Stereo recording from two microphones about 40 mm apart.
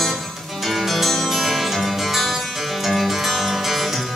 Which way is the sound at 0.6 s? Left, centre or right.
Centre.